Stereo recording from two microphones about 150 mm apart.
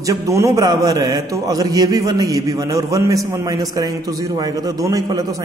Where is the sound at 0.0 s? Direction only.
20° right (ahead or behind).